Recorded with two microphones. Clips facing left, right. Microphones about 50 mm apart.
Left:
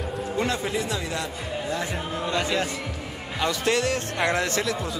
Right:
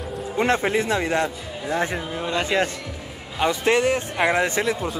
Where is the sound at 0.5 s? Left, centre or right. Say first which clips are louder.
Right 6 dB; right.